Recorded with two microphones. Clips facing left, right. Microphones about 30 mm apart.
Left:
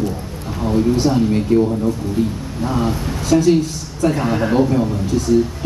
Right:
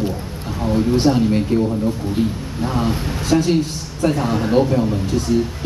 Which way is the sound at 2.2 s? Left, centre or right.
Right.